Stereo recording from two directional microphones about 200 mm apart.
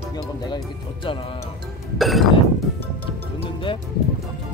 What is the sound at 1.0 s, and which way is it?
Speech, 25° left (ahead or behind).